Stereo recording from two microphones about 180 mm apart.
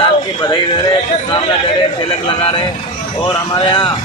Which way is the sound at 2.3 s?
30° left (ahead or behind).